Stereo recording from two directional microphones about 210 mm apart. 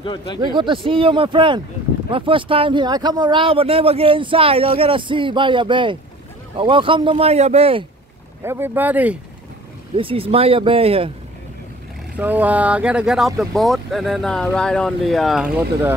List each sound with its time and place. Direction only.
0.5 s speech: 25° right (ahead or behind)
8.5 s speech: 10° right (ahead or behind)
9.9 s speech: 25° right (ahead or behind)
12.2 s speech: 10° right (ahead or behind)